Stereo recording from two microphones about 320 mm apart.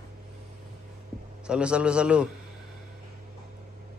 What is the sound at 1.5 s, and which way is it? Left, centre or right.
Speech, centre.